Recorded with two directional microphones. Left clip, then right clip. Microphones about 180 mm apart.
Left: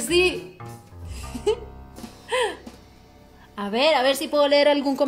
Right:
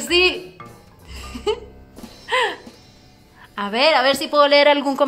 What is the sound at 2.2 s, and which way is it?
Music, 15° left (ahead or behind).